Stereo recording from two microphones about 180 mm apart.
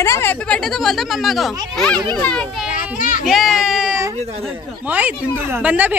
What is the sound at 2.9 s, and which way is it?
Child singing, 45° left (ahead or behind).